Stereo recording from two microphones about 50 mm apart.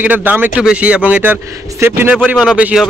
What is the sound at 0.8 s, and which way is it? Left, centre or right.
Speech, right.